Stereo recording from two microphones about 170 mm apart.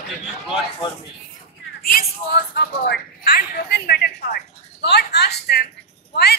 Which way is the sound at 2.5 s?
75° left (ahead or behind).